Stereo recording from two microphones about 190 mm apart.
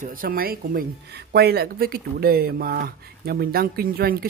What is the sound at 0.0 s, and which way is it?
Speech, 50° right (ahead or behind).